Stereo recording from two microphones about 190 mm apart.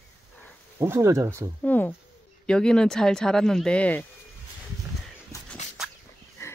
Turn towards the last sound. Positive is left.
turn(degrees=15)  # may be behind; listen again after turning